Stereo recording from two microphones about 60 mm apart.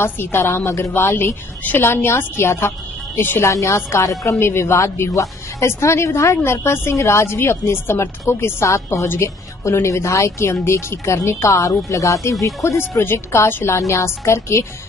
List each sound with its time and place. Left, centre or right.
0.0 s a woman's voice: left
3.4 s a woman's voice: left
4.4 s a woman's voice: left
13.0 s a woman's voice: left
13.7 s a woman's voice: left